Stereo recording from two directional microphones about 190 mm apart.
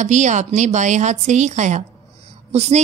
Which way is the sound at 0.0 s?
40° right (ahead or behind).